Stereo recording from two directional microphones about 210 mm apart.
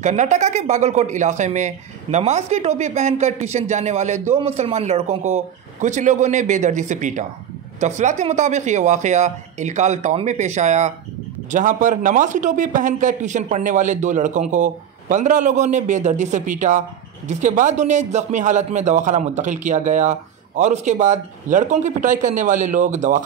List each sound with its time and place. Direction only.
0.0 s speech: 35° right (ahead or behind)